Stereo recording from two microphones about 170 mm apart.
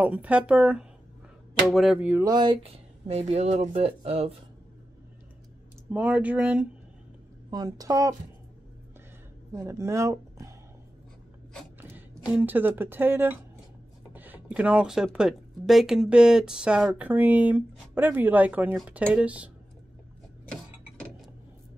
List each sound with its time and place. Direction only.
0.0 s speech: 10° right (ahead or behind)
2.3 s speech: 30° right (ahead or behind)
5.9 s speech: 5° right (ahead or behind)
7.5 s a woman's voice: 20° right (ahead or behind)
9.5 s a woman's voice: 15° right (ahead or behind)
11.8 s speech: 10° right (ahead or behind)